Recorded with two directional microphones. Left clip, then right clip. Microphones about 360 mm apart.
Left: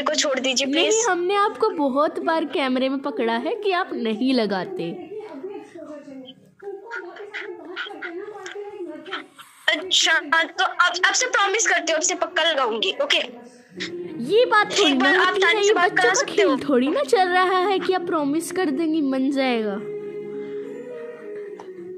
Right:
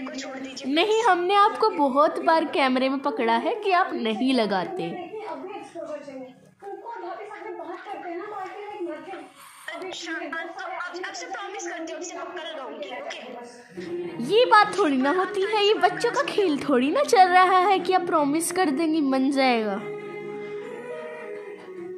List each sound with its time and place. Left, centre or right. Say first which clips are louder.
0.0 s a woman's voice: left 13 dB; left
0.9 s a woman's voice: right 1 dB; centre
9.7 s a woman's voice: left 15 dB; left
14.1 s a woman's voice: even; centre
15.1 s a woman's voice: left 7 dB; left
15.5 s a woman's voice: left 3 dB; centre